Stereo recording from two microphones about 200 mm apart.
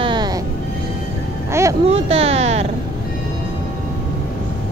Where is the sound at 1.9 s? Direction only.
30° right (ahead or behind).